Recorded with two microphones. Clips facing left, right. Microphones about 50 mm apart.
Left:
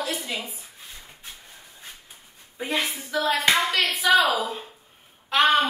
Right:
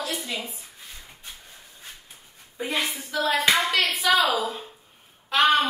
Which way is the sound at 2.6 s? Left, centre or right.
Centre.